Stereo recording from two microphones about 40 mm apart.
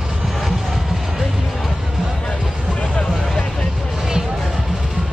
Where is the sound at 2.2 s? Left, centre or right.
Left.